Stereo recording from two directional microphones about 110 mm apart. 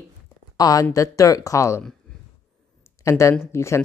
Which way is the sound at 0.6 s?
35° left (ahead or behind).